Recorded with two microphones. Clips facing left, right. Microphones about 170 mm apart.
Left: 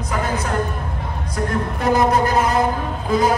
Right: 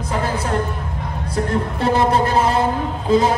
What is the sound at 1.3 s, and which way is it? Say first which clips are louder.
Music: right 2 dB; 30° right (ahead or behind).